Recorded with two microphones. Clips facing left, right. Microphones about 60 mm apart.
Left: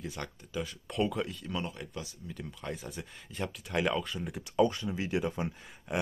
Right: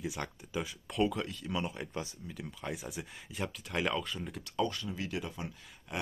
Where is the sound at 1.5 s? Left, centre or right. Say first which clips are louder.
Right 1 dB; centre.